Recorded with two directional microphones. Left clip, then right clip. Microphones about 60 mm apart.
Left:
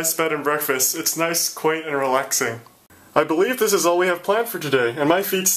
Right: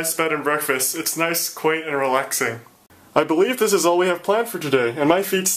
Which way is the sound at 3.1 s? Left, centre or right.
Right.